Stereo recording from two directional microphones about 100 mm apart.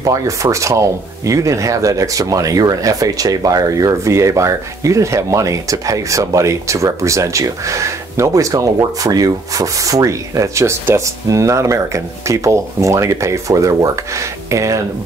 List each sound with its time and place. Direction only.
0.0 s speech: 35° right (ahead or behind)